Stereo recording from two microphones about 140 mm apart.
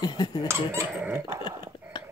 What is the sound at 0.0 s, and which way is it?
Speech, 30° left (ahead or behind).